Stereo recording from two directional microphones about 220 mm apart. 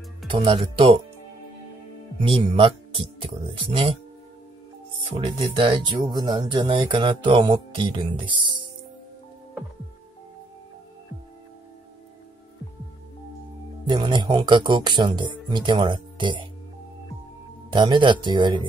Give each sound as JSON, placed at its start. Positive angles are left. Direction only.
{"t": 0.3, "sound": "speech", "side_deg": -25}
{"t": 2.2, "sound": "speech", "side_deg": -25}
{"t": 5.1, "sound": "speech", "side_deg": -25}
{"t": 13.8, "sound": "speech", "side_deg": -20}
{"t": 17.6, "sound": "speech", "side_deg": -20}